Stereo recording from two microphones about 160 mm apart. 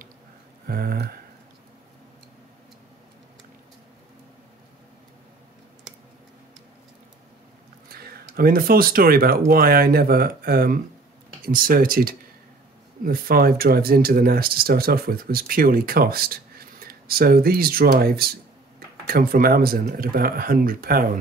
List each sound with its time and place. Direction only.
0.7 s speech: 70° right (ahead or behind)
7.9 s speech: 70° right (ahead or behind)